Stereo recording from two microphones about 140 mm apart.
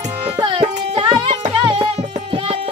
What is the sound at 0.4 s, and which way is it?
Music, 40° right (ahead or behind).